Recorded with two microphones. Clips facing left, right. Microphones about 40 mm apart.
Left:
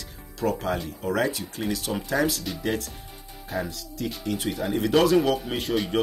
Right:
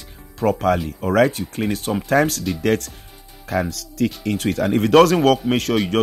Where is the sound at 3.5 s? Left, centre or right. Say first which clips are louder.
Right 8 dB; right.